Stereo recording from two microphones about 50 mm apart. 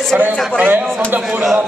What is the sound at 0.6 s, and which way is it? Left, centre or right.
Speech, right.